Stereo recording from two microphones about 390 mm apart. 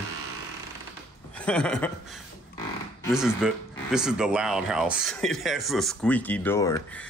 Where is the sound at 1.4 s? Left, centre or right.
Centre.